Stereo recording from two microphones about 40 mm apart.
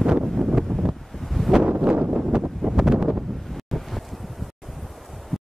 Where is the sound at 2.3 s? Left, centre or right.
Centre.